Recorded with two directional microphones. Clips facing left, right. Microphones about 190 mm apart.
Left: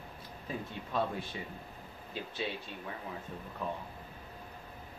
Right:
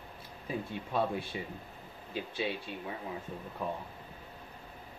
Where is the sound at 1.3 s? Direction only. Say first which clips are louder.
Right 3 dB; 15° right (ahead or behind).